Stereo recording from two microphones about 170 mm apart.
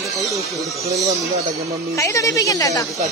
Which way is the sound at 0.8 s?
40° right (ahead or behind).